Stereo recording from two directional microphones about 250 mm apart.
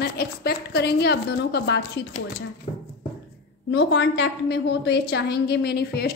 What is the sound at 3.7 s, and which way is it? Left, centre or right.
A woman's voice, left.